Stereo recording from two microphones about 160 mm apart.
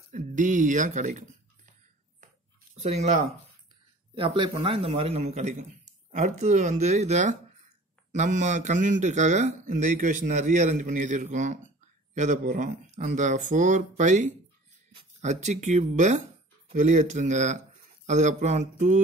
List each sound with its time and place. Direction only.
0.1 s speech: 55° right (ahead or behind)
2.7 s speech: 45° right (ahead or behind)
4.4 s a man's voice: 35° right (ahead or behind)